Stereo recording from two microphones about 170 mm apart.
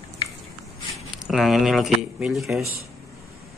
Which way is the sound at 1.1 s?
Centre (ahead or behind).